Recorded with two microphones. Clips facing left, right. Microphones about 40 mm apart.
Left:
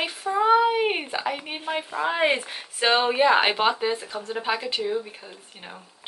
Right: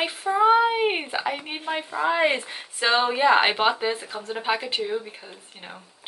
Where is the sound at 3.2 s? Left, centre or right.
Centre.